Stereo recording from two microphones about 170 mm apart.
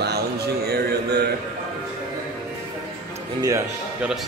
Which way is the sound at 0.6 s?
70° right (ahead or behind).